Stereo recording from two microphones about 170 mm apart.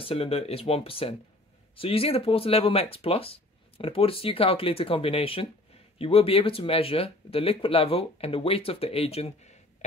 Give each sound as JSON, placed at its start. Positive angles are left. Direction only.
{"t": 0.0, "sound": "speech", "side_deg": 35}